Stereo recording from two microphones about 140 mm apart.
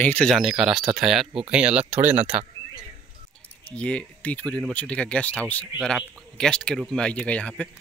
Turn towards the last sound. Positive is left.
turn(degrees=10)  # may be behind; listen again after turning